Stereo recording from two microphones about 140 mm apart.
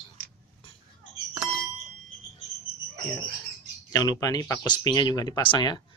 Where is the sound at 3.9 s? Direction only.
25° left (ahead or behind).